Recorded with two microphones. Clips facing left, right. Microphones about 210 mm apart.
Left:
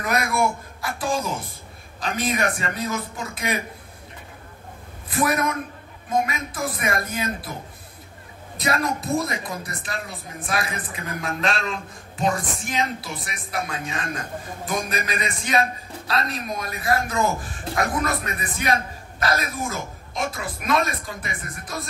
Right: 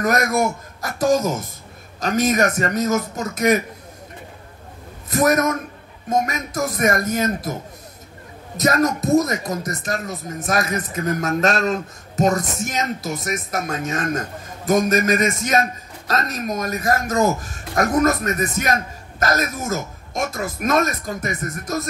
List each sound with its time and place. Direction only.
0.0 s a man's voice: 45° right (ahead or behind)
5.1 s a man's voice: 45° right (ahead or behind)
8.5 s a man's voice: 45° right (ahead or behind)